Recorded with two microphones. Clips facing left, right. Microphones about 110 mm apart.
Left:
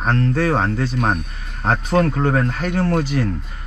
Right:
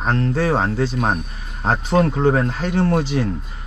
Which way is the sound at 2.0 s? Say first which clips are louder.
Right 1 dB; 25° right (ahead or behind).